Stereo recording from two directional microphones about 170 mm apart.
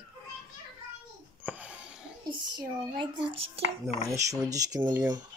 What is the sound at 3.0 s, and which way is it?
Speech, 30° right (ahead or behind).